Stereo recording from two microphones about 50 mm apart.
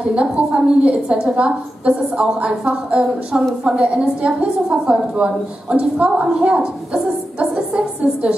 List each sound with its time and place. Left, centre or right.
0.1 s a woman's voice: right